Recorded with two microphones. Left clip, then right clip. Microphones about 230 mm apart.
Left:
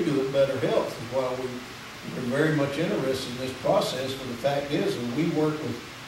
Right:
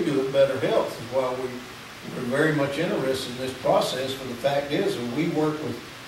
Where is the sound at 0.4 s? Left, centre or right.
Centre.